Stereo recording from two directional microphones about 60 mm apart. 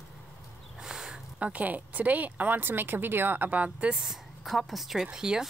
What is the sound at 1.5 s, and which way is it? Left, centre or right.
Speech, right.